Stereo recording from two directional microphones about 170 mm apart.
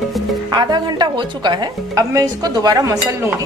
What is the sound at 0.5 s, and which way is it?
A woman's voice, 25° right (ahead or behind).